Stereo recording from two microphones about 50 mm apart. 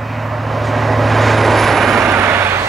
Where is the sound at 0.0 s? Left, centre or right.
Centre.